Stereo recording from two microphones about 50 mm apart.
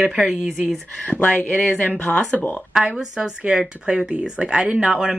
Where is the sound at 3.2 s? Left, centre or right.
Centre.